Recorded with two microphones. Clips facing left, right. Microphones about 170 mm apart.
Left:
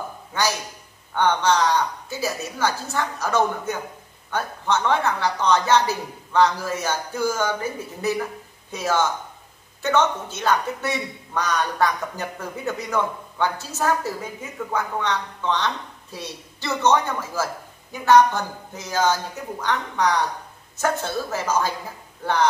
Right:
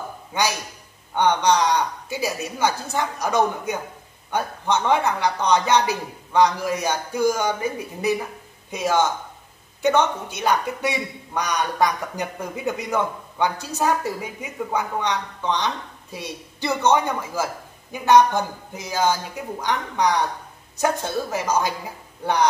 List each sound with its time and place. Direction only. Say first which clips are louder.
0.3 s a man's voice: right 1 dB; 15° right (ahead or behind)